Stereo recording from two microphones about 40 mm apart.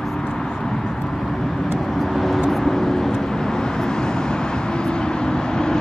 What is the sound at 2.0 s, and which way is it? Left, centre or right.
Vehicle, centre.